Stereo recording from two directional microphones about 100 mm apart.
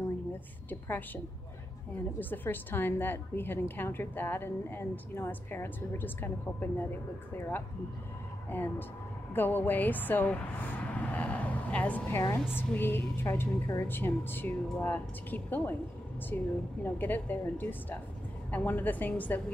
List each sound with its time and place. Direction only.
0.7 s a woman's voice: 15° left (ahead or behind)